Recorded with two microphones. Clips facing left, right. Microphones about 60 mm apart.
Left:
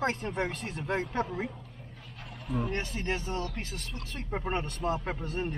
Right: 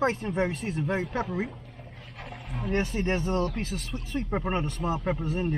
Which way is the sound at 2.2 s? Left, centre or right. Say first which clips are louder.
Left 4 dB; right.